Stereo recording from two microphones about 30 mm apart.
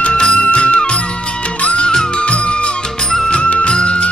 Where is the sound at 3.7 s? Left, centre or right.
Left.